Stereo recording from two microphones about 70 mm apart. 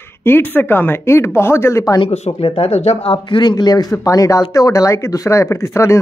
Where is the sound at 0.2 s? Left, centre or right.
Left.